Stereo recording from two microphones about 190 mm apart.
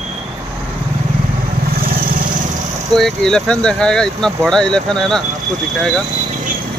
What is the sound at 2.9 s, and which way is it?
Speech, centre (ahead or behind).